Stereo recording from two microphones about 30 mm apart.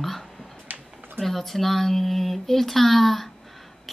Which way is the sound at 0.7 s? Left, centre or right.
Right.